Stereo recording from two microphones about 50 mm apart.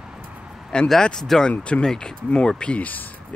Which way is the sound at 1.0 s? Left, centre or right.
Centre.